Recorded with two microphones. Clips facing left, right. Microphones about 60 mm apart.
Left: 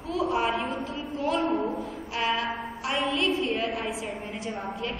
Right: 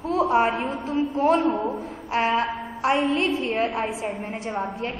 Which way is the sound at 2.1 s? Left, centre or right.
Right.